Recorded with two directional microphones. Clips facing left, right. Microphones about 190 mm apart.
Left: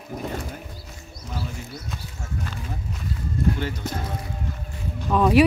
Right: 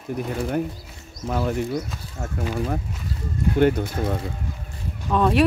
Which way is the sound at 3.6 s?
55° right (ahead or behind).